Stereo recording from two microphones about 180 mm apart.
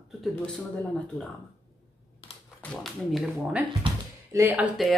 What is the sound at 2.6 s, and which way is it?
Speech, 5° left (ahead or behind).